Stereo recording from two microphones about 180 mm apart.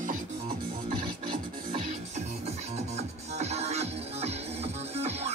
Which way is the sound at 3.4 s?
35° right (ahead or behind).